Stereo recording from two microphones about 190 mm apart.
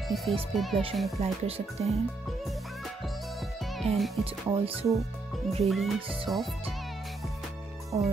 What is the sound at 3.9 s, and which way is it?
Music, centre (ahead or behind).